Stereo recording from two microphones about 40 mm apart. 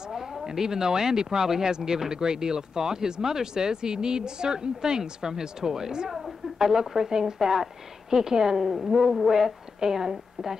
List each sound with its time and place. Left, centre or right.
0.1 s speech: centre
6.0 s a sound: centre
6.6 s speech: centre